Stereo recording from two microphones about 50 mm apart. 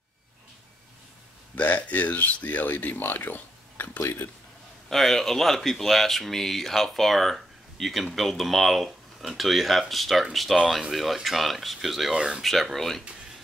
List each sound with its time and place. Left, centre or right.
1.5 s speech: left
4.8 s speech: centre
12.1 s speech: centre
12.4 s speech: centre